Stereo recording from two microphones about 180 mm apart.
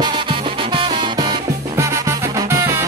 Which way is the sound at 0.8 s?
25° right (ahead or behind).